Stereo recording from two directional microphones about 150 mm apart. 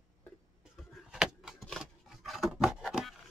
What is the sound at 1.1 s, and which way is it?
Rub, 5° right (ahead or behind).